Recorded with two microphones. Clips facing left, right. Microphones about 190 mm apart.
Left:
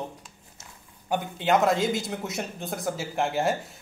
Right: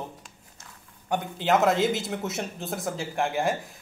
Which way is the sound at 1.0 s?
Centre (ahead or behind).